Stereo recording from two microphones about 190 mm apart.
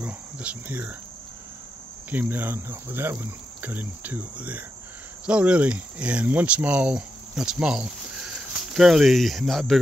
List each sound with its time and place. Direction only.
0.0 s cricket: 5° right (ahead or behind)
2.0 s cricket: 10° right (ahead or behind)
5.2 s speech: 5° right (ahead or behind)